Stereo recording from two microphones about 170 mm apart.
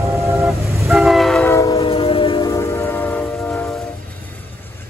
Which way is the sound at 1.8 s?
35° left (ahead or behind).